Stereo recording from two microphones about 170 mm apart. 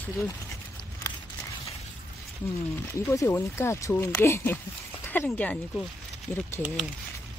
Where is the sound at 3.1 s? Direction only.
15° left (ahead or behind).